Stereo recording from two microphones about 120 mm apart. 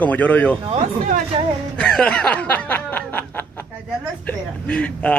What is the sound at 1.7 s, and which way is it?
Snicker, 10° left (ahead or behind).